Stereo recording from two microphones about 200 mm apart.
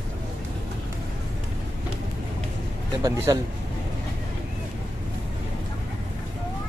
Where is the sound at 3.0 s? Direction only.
15° right (ahead or behind).